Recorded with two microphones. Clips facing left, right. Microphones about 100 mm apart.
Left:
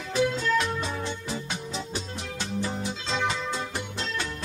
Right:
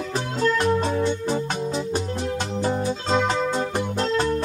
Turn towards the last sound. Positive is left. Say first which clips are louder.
# right 11 dB
turn(degrees=-40)  # may be behind; listen again after turning